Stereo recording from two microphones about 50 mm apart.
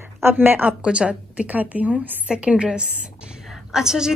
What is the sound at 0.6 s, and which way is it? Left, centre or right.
Speech, right.